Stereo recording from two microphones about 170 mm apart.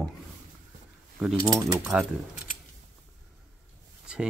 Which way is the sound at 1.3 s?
25° right (ahead or behind).